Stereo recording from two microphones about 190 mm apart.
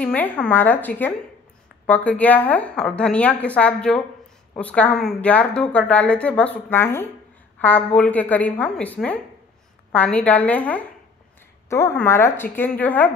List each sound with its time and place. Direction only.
0.0 s speech: 5° left (ahead or behind)